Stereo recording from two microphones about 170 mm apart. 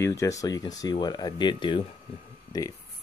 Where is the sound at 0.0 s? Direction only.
15° left (ahead or behind).